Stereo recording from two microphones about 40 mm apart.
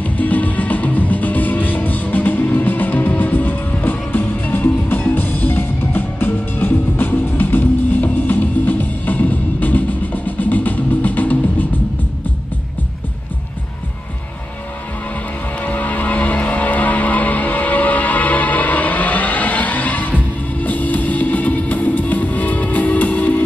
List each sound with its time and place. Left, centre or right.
0.0 s music: left
15.6 s vehicle: left
20.6 s music: left